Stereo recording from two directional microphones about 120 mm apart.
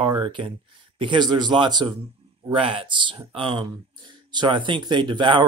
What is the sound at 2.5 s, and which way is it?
Speech, 50° right (ahead or behind).